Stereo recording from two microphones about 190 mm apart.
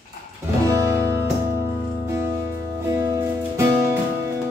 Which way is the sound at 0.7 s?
15° right (ahead or behind).